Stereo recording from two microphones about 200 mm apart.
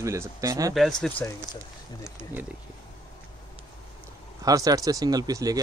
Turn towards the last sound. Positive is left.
turn(degrees=-20)  # may be behind; listen again after turning